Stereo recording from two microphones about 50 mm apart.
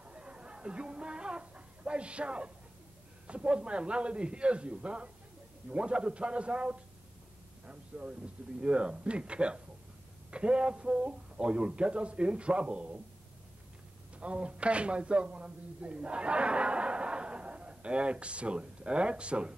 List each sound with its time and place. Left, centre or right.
0.0 s a sound: right
3.3 s speech: right
14.1 s speech: right